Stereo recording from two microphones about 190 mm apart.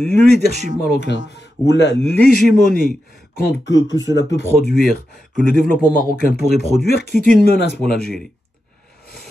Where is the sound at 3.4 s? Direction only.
75° left (ahead or behind).